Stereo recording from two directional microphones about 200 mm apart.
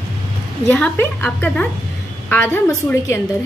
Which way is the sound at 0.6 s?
10° left (ahead or behind).